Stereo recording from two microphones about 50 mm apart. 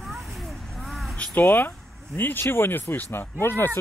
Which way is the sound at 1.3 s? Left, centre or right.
Left.